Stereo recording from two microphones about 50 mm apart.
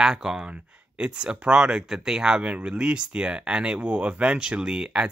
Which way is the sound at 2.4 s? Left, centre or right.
Right.